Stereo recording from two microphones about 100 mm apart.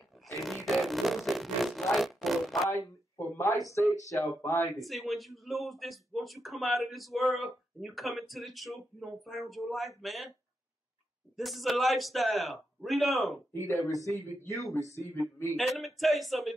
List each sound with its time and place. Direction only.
0.7 s a sound: centre (ahead or behind)
2.7 s a sound: 25° left (ahead or behind)
3.9 s speech: 35° left (ahead or behind)
4.7 s speech: centre (ahead or behind)
11.3 s speech: centre (ahead or behind)
13.7 s speech: 35° right (ahead or behind)
14.0 s speech: 30° left (ahead or behind)
15.5 s speech: centre (ahead or behind)